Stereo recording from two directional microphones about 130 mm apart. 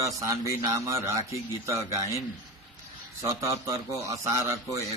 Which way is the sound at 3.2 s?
25° right (ahead or behind).